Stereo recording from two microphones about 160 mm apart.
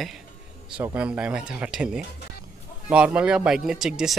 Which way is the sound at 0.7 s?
10° right (ahead or behind).